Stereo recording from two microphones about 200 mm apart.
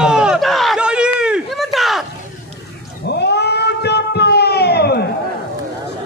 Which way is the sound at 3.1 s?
55° left (ahead or behind).